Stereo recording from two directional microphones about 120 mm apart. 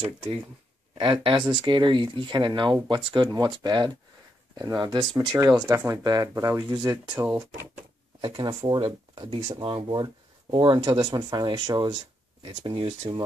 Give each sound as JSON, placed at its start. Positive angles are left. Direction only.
{"t": 0.9, "sound": "speech", "side_deg": -50}
{"t": 6.7, "sound": "speech", "side_deg": -35}
{"t": 7.2, "sound": "speech", "side_deg": -15}
{"t": 8.2, "sound": "speech", "side_deg": -40}